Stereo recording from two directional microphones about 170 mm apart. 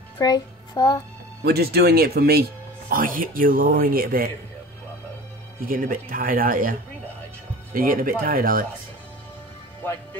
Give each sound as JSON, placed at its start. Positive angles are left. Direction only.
{"t": 0.2, "sound": "a child's voice", "side_deg": 20}
{"t": 1.4, "sound": "speech", "side_deg": -70}
{"t": 2.9, "sound": "speech", "side_deg": -55}
{"t": 5.6, "sound": "speech", "side_deg": -55}